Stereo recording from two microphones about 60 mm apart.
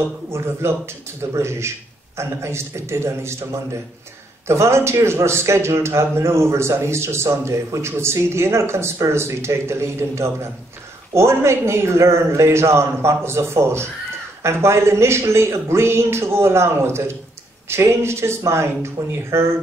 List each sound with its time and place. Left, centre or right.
0.3 s a man's voice: right